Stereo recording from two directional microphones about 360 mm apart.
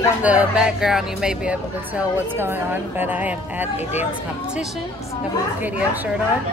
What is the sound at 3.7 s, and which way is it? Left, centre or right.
Speech, centre.